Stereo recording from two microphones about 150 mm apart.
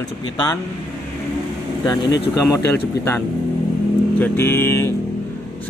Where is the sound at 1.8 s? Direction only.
25° left (ahead or behind).